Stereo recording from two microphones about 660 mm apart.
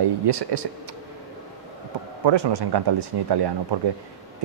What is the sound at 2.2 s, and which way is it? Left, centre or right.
Speech, right.